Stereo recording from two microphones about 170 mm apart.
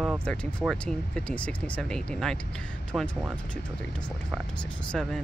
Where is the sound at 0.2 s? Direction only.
5° left (ahead or behind).